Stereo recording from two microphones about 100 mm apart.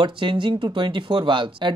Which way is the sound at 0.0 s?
55° right (ahead or behind).